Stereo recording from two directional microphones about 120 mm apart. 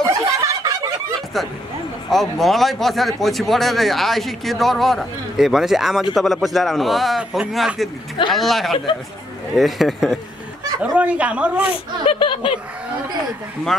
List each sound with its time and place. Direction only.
0.0 s a sound: 25° right (ahead or behind)
2.0 s speech: centre (ahead or behind)
12.1 s speech: 45° left (ahead or behind)